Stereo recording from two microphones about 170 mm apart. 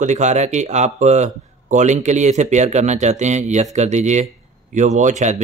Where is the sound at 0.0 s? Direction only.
45° right (ahead or behind).